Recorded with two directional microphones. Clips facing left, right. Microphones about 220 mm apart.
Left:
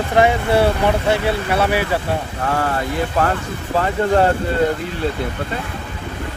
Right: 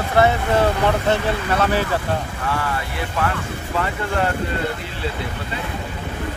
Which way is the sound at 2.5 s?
45° left (ahead or behind).